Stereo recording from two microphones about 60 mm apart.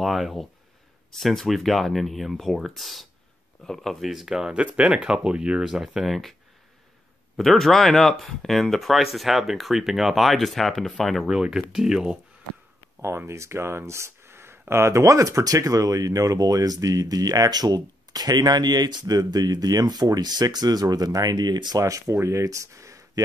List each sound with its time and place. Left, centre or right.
0.0 s speech: centre
7.3 s speech: centre
11.2 s speech: centre
13.0 s speech: right
22.1 s speech: right